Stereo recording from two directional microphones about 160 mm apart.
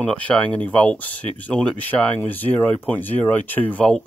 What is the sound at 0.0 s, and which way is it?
Speech, 5° left (ahead or behind).